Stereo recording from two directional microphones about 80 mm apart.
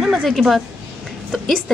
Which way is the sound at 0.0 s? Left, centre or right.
Centre.